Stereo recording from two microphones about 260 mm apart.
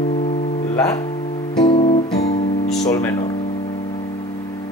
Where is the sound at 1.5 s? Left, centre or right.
Centre.